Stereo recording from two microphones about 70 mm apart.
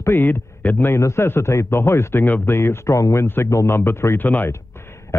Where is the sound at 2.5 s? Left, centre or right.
Left.